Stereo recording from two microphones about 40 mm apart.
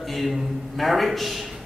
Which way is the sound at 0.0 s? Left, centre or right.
Centre.